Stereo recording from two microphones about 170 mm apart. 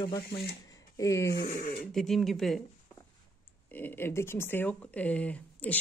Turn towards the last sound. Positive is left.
turn(degrees=10)  # may be behind; listen again after turning